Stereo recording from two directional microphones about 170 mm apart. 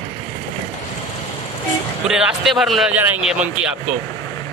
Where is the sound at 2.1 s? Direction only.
Centre (ahead or behind).